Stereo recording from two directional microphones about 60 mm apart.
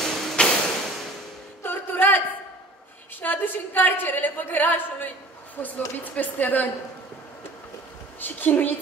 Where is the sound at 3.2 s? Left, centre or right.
Left.